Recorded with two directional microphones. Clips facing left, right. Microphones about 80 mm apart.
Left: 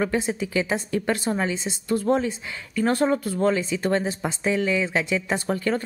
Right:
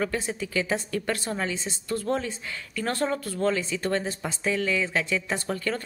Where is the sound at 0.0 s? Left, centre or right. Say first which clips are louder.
Left 4 dB; centre.